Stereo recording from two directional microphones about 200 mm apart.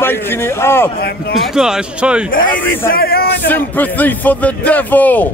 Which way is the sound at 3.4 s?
10° left (ahead or behind).